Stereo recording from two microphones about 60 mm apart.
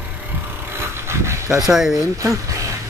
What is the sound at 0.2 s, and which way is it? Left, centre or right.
Vehicle, right.